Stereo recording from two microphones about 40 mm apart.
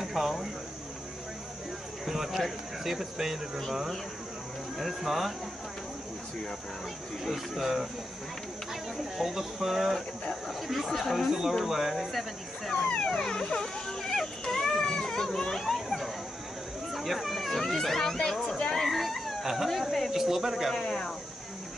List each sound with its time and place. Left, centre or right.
0.0 s a sound: centre
2.0 s speech: centre
4.7 s speech: centre
7.2 s speech: centre
8.9 s speech: centre
10.9 s speech: centre
12.7 s speech: left
13.0 s dog: centre
15.3 s a sound: centre
16.9 s speech: centre
18.7 s a sound: centre
19.5 s speech: centre
20.7 s speech: centre